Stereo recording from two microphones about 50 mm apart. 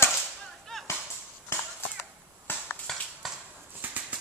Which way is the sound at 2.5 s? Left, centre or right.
Left.